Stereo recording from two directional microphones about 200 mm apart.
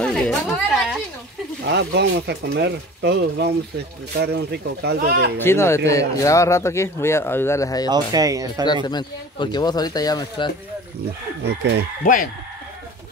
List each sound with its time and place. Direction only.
0.0 s a sound: 5° left (ahead or behind)
1.7 s speech: 60° right (ahead or behind)
5.4 s speech: 15° left (ahead or behind)
7.9 s speech: 20° right (ahead or behind)
8.8 s speech: 20° left (ahead or behind)
11.4 s speech: 60° right (ahead or behind)
12.0 s speech: 40° left (ahead or behind)